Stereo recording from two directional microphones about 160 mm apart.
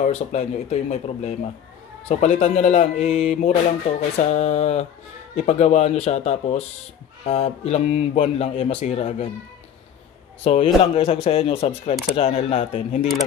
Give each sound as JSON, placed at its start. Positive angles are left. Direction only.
{"t": 0.0, "sound": "speech", "side_deg": 45}
{"t": 10.4, "sound": "speech", "side_deg": 40}